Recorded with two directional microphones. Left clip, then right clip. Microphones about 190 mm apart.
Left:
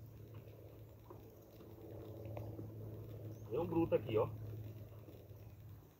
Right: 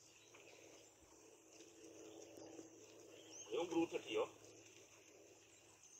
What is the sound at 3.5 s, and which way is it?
Speech, 15° right (ahead or behind).